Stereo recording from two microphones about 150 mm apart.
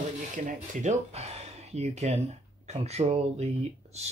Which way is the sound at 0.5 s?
55° right (ahead or behind).